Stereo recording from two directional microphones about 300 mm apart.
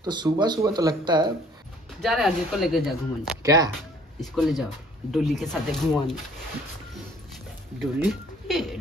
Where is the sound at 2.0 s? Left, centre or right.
Centre.